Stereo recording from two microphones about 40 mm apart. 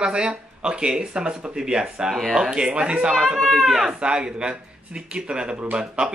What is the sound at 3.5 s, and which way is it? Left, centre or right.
Speech, centre.